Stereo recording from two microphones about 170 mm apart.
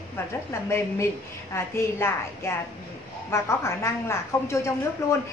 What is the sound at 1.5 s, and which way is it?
A woman's voice, 15° left (ahead or behind).